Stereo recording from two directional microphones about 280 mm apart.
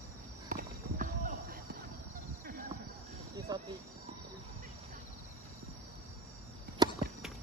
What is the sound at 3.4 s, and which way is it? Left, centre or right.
Cricket, centre.